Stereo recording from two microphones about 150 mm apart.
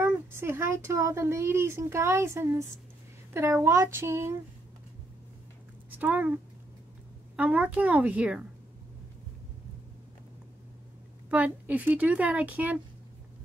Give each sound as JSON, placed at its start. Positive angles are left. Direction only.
{"t": 0.0, "sound": "a sound", "side_deg": -15}
{"t": 0.8, "sound": "speech", "side_deg": -20}
{"t": 5.9, "sound": "speech", "side_deg": -10}
{"t": 11.2, "sound": "speech", "side_deg": -10}